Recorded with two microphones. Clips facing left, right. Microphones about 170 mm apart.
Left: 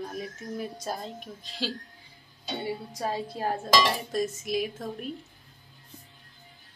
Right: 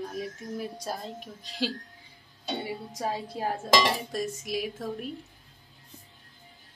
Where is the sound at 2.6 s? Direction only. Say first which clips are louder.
Left 4 dB; 10° right (ahead or behind).